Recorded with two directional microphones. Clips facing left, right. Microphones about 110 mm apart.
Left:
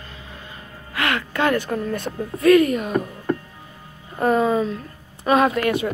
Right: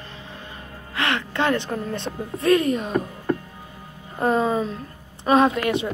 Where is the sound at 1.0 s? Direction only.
25° right (ahead or behind).